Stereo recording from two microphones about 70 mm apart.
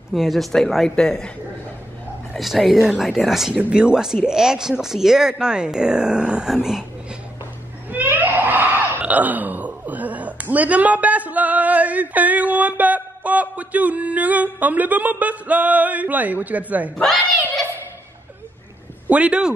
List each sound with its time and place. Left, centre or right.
0.1 s a man's voice: centre
2.3 s speech: centre
7.9 s a sound: right
16.9 s speech: centre
19.0 s speech: centre